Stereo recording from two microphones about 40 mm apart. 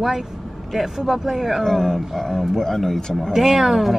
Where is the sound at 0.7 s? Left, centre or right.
Centre.